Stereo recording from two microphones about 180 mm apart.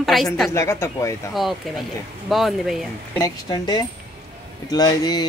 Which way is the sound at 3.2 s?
20° left (ahead or behind).